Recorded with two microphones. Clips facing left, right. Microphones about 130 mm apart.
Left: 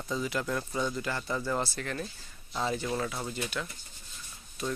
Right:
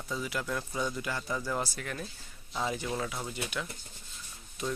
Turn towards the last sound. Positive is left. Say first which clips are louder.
# left 1 dB
turn(degrees=-20)  # may be behind; listen again after turning